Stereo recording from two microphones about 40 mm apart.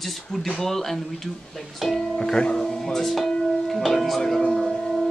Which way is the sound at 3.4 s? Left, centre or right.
Centre.